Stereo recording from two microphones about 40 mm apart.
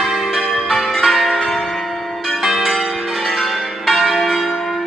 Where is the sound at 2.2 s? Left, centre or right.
Centre.